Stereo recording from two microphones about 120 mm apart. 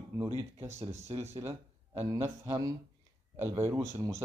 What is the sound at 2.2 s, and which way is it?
A man's voice, 25° right (ahead or behind).